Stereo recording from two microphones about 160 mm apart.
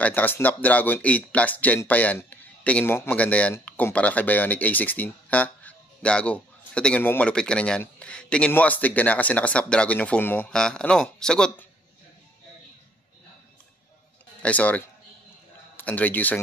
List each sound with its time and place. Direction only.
0.0 s speech: 10° left (ahead or behind)
14.4 s speech: 10° left (ahead or behind)
15.8 s speech: 10° left (ahead or behind)